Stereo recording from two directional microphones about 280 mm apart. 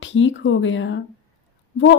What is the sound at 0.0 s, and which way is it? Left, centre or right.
A woman's voice, left.